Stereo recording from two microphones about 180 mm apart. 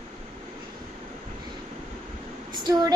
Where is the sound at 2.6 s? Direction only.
25° right (ahead or behind).